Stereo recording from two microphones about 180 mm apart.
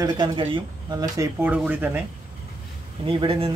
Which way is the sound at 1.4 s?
5° right (ahead or behind).